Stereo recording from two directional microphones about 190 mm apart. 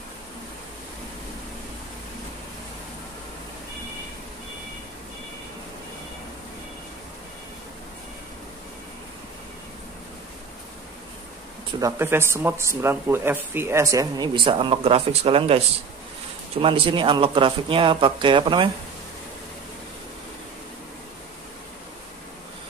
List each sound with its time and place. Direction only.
11.8 s speech: 10° right (ahead or behind)